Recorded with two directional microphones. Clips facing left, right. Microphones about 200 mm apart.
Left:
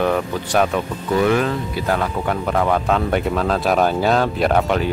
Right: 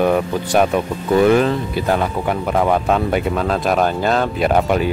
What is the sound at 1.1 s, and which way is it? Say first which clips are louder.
Speech: right 4 dB; 30° right (ahead or behind).